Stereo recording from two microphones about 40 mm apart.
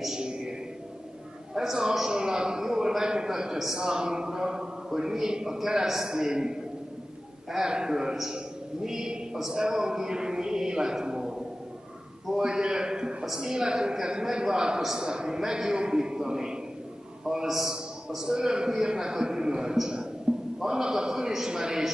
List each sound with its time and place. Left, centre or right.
0.0 s a sound: centre
1.5 s a man's voice: centre
20.3 s music: centre
20.6 s a man's voice: centre